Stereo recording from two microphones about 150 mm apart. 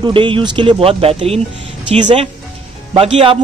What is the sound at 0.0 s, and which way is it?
A man's voice, 35° right (ahead or behind).